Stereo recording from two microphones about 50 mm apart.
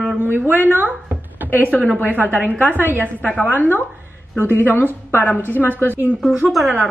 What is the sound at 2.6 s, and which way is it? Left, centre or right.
A woman's voice, left.